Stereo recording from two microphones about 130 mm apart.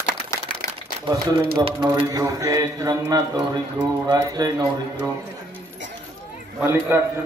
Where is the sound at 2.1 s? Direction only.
25° right (ahead or behind).